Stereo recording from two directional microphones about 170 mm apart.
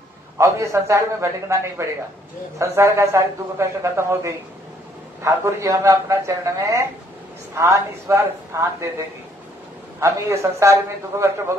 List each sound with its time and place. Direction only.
0.4 s a man's voice: 15° right (ahead or behind)
9.9 s a man's voice: 15° right (ahead or behind)